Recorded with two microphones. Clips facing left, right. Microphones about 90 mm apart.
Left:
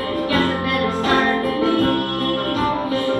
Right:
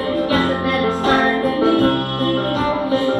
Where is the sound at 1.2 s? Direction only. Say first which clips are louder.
Right 1 dB; 5° right (ahead or behind).